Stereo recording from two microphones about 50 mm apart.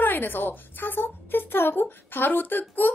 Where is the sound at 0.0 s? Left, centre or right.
Left.